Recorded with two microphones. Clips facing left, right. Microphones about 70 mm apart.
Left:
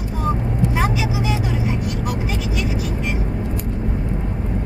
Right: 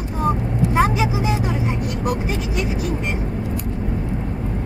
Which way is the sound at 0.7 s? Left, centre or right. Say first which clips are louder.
Right 7 dB; right.